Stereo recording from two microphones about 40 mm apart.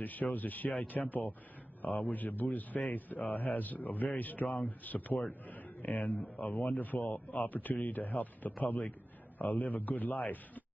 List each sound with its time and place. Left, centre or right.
0.0 s a man's voice: left